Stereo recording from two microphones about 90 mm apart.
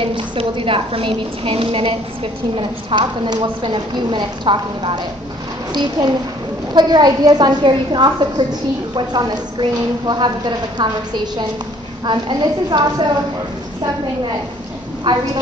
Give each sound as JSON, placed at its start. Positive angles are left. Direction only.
{"t": 0.0, "sound": "a woman's voice", "side_deg": -90}
{"t": 2.5, "sound": "a woman's voice", "side_deg": -75}
{"t": 3.6, "sound": "a woman's voice", "side_deg": -60}
{"t": 12.1, "sound": "a woman's voice", "side_deg": -55}
{"t": 15.1, "sound": "a woman's voice", "side_deg": -55}